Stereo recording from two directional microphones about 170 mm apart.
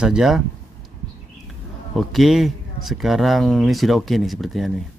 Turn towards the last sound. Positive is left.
turn(degrees=0)  # may be behind; listen again after turning